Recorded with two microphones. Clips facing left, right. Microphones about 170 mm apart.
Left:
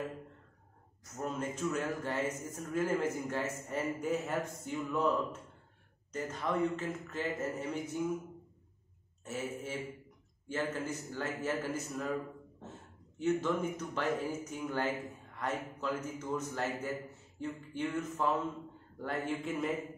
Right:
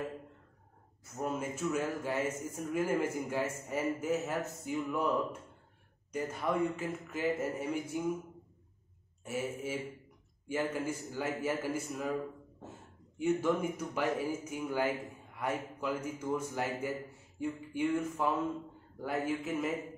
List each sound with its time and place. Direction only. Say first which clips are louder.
1.2 s a man's voice: right 1 dB; 10° right (ahead or behind)
9.2 s a man's voice: right 2 dB; 10° right (ahead or behind)
13.2 s a man's voice: right 1 dB; 10° right (ahead or behind)